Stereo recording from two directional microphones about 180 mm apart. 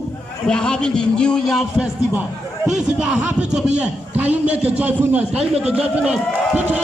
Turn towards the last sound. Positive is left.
turn(degrees=-5)  # may be behind; listen again after turning